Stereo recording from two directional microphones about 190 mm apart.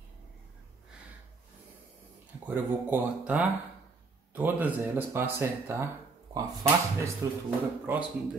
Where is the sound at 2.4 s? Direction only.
10° right (ahead or behind).